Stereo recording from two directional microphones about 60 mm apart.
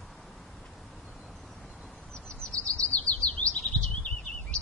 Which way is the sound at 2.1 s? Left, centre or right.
Centre.